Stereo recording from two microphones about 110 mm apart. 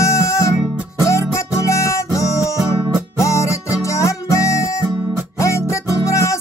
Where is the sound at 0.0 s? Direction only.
25° left (ahead or behind).